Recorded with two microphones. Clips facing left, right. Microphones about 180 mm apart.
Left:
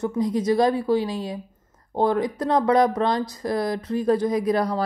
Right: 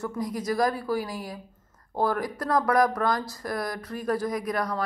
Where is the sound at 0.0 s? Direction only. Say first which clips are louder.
Left 7 dB; 20° left (ahead or behind).